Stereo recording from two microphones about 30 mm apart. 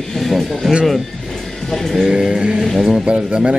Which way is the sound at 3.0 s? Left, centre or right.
Right.